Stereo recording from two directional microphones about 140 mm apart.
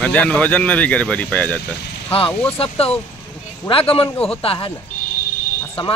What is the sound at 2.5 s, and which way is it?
Speech, 45° left (ahead or behind).